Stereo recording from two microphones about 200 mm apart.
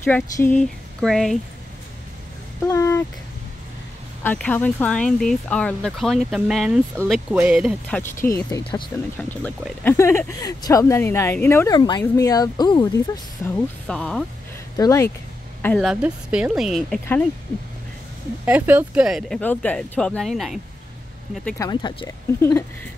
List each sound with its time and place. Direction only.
0.0 s speech: 10° left (ahead or behind)
2.6 s speech: 15° left (ahead or behind)
4.2 s speech: 10° left (ahead or behind)
8.0 s speech: 10° left (ahead or behind)
9.3 s speech: 10° left (ahead or behind)
13.4 s speech: 5° left (ahead or behind)
14.8 s speech: 15° left (ahead or behind)
15.6 s speech: 5° left (ahead or behind)
18.4 s speech: 10° right (ahead or behind)
21.5 s speech: 20° left (ahead or behind)